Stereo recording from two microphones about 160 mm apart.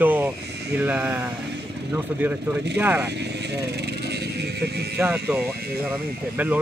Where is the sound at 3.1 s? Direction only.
90° right.